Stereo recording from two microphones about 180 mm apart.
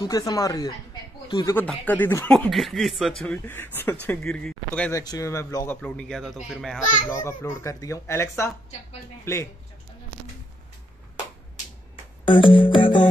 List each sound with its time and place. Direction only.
0.0 s speech: 20° left (ahead or behind)
4.9 s speech: 20° left (ahead or behind)
5.8 s speech: 5° left (ahead or behind)
7.1 s speech: 15° left (ahead or behind)
12.3 s speech: 30° left (ahead or behind)